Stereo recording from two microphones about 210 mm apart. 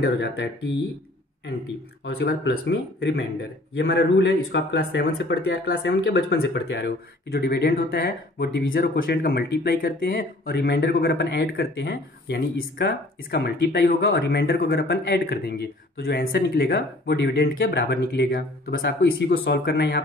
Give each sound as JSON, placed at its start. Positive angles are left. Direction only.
{"t": 0.0, "sound": "speech", "side_deg": 55}
{"t": 2.0, "sound": "speech", "side_deg": 50}